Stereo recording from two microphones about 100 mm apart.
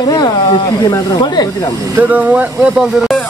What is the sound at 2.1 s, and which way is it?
Speech, 15° right (ahead or behind).